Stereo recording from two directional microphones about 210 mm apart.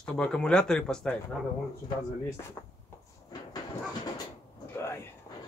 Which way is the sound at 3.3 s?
20° left (ahead or behind).